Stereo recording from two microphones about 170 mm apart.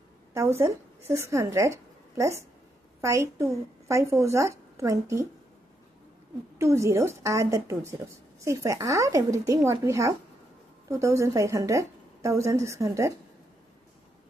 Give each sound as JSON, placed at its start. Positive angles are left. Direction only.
{"t": 0.3, "sound": "speech", "side_deg": -15}
{"t": 6.6, "sound": "speech", "side_deg": -15}